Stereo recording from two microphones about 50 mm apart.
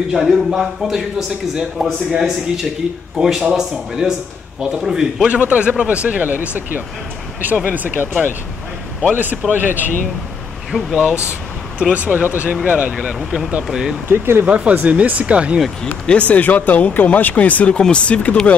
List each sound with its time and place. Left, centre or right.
0.1 s a man's voice: centre
5.3 s speech: right
9.1 s speech: right
10.7 s speech: centre
11.9 s speech: right
13.2 s a man's voice: centre
14.0 s speech: right
14.4 s speech: right
16.1 s speech: left